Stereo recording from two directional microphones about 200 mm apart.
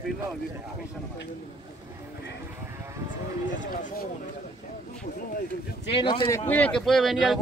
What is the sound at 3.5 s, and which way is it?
Speech, 40° left (ahead or behind).